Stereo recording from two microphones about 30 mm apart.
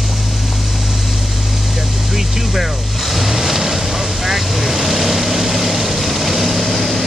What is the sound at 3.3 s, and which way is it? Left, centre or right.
Vehicle, centre.